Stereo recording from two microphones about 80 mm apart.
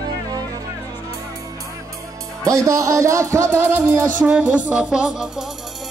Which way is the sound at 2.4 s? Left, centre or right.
Right.